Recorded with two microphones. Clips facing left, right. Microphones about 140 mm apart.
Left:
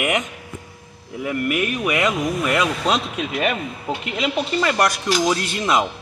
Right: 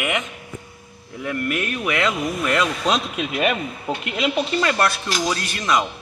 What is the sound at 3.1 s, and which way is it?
Speech, 10° right (ahead or behind).